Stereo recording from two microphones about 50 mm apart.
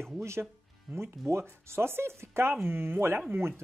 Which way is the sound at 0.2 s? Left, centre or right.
Right.